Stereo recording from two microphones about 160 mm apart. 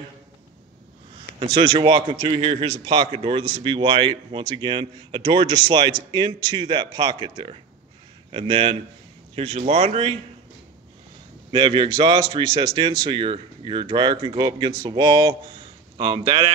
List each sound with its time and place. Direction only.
1.4 s a man's voice: 40° right (ahead or behind)
11.5 s a man's voice: 30° right (ahead or behind)